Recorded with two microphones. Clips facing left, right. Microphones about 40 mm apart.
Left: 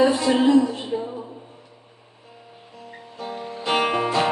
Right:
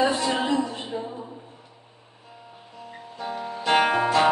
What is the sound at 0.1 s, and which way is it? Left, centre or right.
Speech, centre.